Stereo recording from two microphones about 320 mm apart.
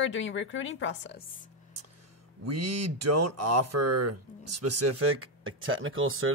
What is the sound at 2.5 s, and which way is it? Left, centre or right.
Speech, right.